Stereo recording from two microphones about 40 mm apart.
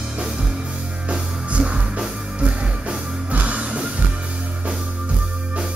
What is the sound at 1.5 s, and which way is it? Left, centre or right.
Music, right.